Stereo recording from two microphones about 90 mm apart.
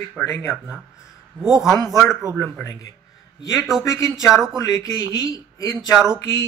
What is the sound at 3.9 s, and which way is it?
Speech, 35° left (ahead or behind).